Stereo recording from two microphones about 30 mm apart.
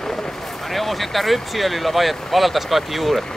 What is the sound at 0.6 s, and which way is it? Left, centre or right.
Speech, centre.